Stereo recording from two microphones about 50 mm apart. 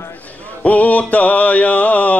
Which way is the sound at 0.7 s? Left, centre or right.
Left.